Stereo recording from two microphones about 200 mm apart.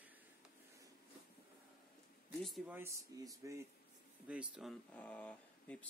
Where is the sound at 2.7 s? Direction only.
15° right (ahead or behind).